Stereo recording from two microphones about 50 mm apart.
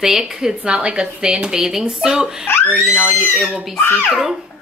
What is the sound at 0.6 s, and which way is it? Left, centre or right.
Speech, right.